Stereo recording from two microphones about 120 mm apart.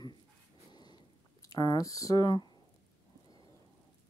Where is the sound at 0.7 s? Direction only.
35° left (ahead or behind).